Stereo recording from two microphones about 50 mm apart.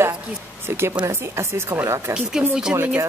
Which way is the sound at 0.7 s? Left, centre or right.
Right.